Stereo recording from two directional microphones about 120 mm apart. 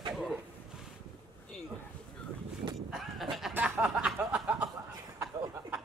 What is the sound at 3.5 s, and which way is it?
Snicker, 10° right (ahead or behind).